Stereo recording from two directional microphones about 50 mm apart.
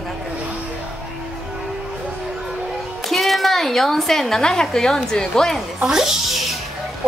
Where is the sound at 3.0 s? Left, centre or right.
Centre.